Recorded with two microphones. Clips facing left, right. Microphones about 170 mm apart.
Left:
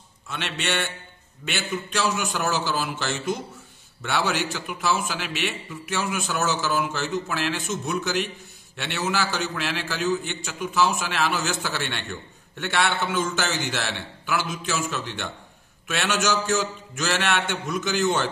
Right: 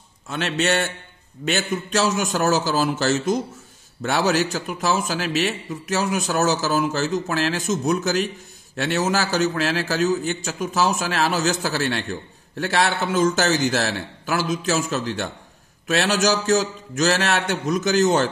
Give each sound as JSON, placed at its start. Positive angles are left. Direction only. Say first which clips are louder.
{"t": 0.3, "sound": "a man's voice", "louder": "right 7 dB", "side_deg": -40}